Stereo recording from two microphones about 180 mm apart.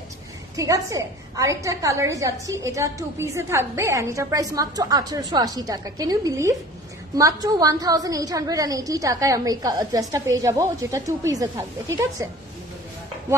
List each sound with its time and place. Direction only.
0.6 s a woman's voice: 20° right (ahead or behind)